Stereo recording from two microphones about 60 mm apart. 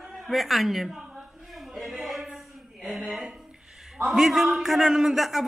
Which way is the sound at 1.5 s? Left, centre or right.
Centre.